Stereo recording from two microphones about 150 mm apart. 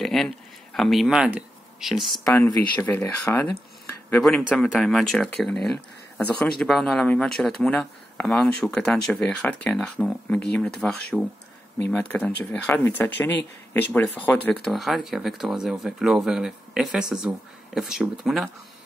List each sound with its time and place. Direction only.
0.0 s a sound: 5° left (ahead or behind)
0.7 s speech: centre (ahead or behind)
2.2 s speech: 15° left (ahead or behind)
4.2 s speech: centre (ahead or behind)